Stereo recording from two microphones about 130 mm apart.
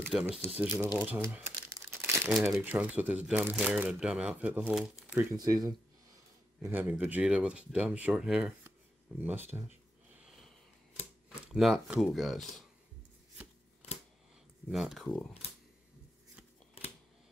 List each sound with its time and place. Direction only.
0.1 s speech: 5° right (ahead or behind)
1.7 s crumpling: 20° right (ahead or behind)
2.2 s speech: centre (ahead or behind)
2.6 s speech: 10° right (ahead or behind)
5.3 s speech: 30° right (ahead or behind)
6.6 s speech: 15° right (ahead or behind)
10.2 s sniff: centre (ahead or behind)
11.2 s speech: 5° right (ahead or behind)
14.7 s speech: centre (ahead or behind)
16.8 s camera: 50° left (ahead or behind)